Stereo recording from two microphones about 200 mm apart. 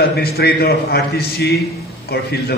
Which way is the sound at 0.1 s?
50° left (ahead or behind).